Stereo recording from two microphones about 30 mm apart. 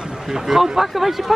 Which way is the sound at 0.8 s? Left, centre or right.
Centre.